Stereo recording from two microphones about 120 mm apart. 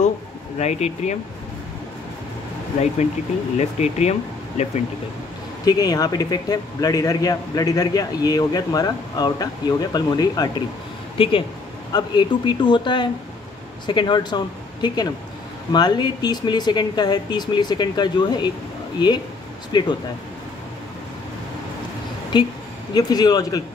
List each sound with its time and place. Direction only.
0.6 s speech: 65° left (ahead or behind)
3.5 s speech: 70° left (ahead or behind)
5.7 s speech: 30° left (ahead or behind)
11.2 s speech: 50° left (ahead or behind)
22.3 s speech: 40° left (ahead or behind)